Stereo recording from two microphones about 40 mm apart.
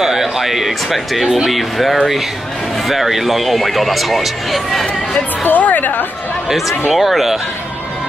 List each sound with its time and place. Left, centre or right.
0.0 s speech: centre
5.4 s a woman's voice: left
6.9 s speech: centre